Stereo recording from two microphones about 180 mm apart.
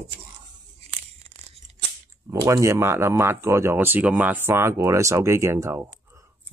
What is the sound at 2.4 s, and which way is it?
Speech, 15° right (ahead or behind).